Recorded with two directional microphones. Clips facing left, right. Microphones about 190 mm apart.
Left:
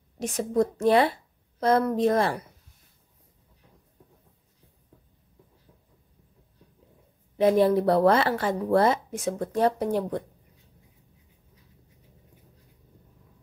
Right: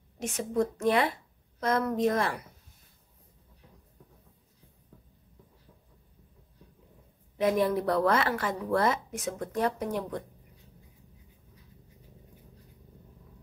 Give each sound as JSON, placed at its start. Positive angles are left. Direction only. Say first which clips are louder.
{"t": 0.2, "sound": "speech", "louder": "left 4 dB", "side_deg": 35}
{"t": 7.3, "sound": "speech", "louder": "left 6 dB", "side_deg": 30}